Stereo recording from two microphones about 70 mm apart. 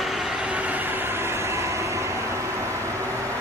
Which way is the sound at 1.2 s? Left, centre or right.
Right.